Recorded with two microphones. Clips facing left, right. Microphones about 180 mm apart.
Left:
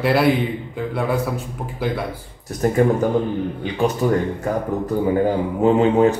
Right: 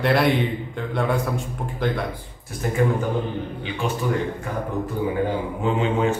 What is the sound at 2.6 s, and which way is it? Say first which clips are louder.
Speech: left 7 dB; 45° left (ahead or behind).